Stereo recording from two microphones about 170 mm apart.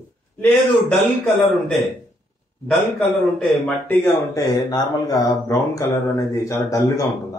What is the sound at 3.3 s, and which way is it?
Speech, 5° left (ahead or behind).